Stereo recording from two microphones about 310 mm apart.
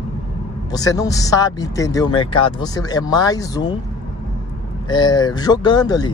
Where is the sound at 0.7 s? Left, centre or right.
Centre.